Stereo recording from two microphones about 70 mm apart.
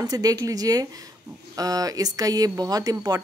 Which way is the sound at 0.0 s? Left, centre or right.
Right.